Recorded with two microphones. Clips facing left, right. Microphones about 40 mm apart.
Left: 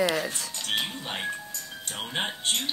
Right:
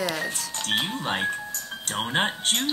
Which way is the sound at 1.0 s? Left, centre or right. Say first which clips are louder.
Right 6 dB; right.